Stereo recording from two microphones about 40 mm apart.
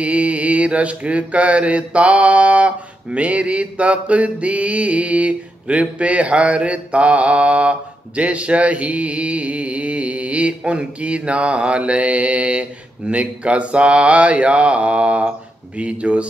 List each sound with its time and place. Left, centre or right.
0.0 s mantra: right
8.2 s a sound: right
13.1 s mantra: right